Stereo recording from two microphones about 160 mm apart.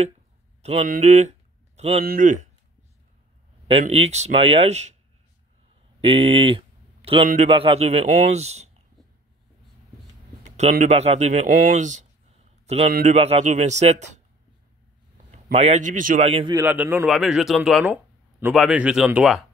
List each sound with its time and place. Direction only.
0.6 s a sound: 40° right (ahead or behind)
0.8 s speech: 45° right (ahead or behind)
3.8 s speech: 40° right (ahead or behind)
6.0 s a man's voice: 40° right (ahead or behind)
10.5 s speech: 45° right (ahead or behind)
11.5 s a man's voice: 55° right (ahead or behind)
15.5 s speech: 45° right (ahead or behind)
16.3 s speech: 35° right (ahead or behind)
16.5 s a man's voice: 10° right (ahead or behind)
17.1 s speech: centre (ahead or behind)